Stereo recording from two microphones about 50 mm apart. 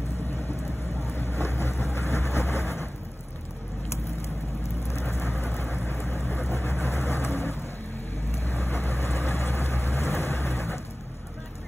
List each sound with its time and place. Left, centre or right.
1.1 s vehicle: left
4.6 s vehicle: left